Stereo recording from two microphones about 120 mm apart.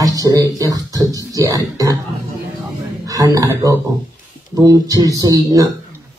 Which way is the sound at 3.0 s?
30° right (ahead or behind).